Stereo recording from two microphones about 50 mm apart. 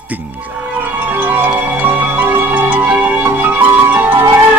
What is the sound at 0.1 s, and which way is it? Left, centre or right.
Speech, right.